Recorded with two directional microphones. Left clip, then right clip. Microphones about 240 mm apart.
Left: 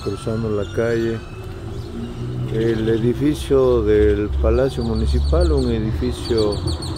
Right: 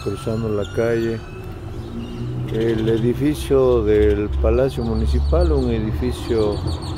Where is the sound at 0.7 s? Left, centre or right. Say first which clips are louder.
Even; centre.